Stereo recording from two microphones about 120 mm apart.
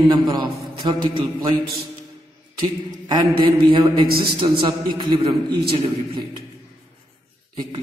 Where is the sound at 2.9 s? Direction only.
35° right (ahead or behind).